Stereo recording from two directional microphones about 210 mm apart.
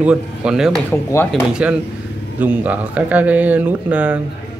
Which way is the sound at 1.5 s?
5° right (ahead or behind).